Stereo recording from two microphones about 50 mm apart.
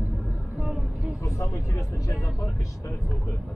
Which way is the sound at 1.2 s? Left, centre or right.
Left.